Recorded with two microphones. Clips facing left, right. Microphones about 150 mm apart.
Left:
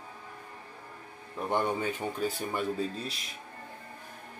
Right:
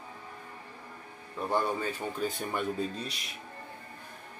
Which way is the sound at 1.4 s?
20° left (ahead or behind).